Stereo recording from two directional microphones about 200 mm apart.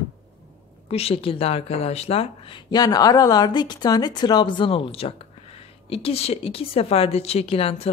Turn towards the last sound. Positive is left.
turn(degrees=30)  # may be behind; listen again after turning